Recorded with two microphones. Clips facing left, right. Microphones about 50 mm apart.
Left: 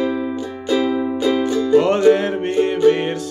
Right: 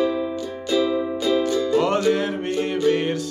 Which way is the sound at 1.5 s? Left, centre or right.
Left.